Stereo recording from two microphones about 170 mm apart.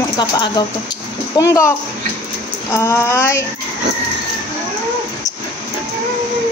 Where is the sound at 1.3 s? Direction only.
20° left (ahead or behind).